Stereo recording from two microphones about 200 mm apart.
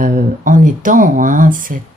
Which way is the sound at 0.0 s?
40° right (ahead or behind).